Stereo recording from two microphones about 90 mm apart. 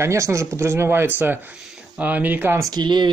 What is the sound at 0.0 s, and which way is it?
Speech, 35° right (ahead or behind).